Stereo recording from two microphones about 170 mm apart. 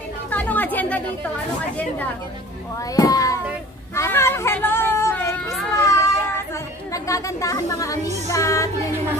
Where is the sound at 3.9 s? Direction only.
15° left (ahead or behind).